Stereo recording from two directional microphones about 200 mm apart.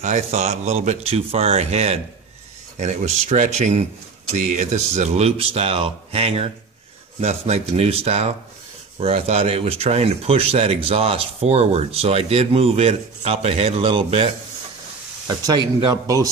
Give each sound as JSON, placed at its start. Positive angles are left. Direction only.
{"t": 0.0, "sound": "speech", "side_deg": -35}